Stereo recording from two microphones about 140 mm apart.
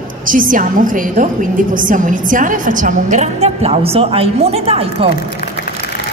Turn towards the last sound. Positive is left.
turn(degrees=-45)  # may be behind; listen again after turning